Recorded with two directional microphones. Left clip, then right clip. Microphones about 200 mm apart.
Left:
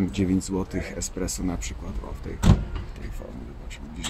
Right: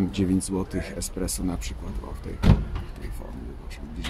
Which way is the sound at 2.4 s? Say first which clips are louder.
Even; 55° left (ahead or behind).